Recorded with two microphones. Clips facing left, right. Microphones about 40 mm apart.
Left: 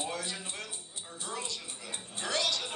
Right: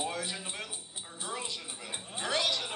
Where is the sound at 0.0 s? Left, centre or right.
Centre.